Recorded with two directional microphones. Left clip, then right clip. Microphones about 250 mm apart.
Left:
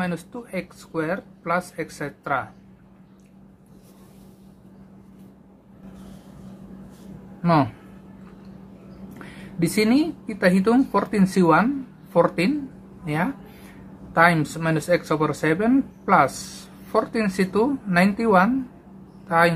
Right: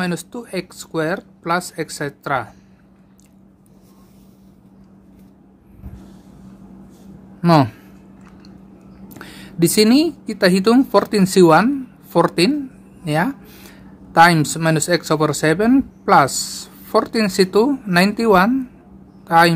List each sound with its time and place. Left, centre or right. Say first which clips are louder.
0.0 s speech: right 5 dB; right
7.4 s speech: right 5 dB; right
9.2 s a woman's voice: right 8 dB; right